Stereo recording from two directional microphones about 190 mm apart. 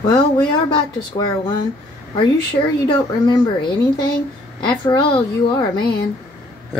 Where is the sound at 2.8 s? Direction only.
25° left (ahead or behind).